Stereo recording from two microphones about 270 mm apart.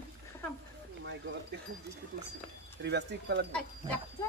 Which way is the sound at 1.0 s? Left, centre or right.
Right.